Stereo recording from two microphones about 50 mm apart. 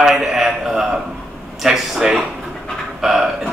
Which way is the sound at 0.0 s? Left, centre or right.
Centre.